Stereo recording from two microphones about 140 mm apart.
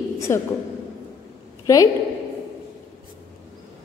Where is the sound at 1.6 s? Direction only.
25° left (ahead or behind).